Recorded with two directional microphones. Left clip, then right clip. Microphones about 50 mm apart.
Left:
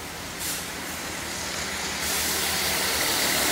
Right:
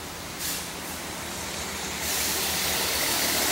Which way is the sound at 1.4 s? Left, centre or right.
Left.